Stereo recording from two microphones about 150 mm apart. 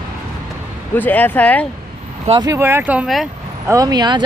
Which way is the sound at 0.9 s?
10° left (ahead or behind).